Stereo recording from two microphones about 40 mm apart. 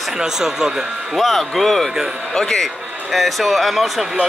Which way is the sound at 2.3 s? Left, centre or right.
Centre.